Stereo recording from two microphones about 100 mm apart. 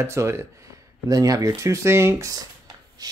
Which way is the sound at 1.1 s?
35° right (ahead or behind).